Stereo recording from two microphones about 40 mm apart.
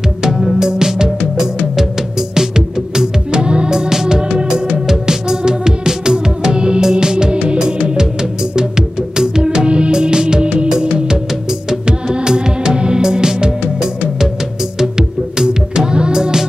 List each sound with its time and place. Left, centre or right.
0.6 s music: centre
11.7 s music: right